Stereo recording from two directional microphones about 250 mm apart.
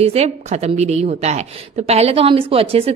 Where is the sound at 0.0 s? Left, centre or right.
Right.